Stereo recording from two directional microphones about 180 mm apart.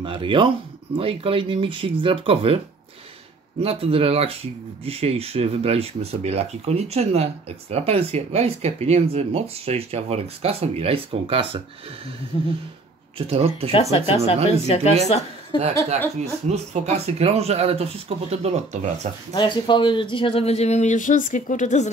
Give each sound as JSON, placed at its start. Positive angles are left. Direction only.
{"t": 0.0, "sound": "speech", "side_deg": -30}
{"t": 3.6, "sound": "speech", "side_deg": -30}
{"t": 13.3, "sound": "speech", "side_deg": -35}
{"t": 13.7, "sound": "speech", "side_deg": 30}
{"t": 16.2, "sound": "speech", "side_deg": -35}
{"t": 19.3, "sound": "speech", "side_deg": 25}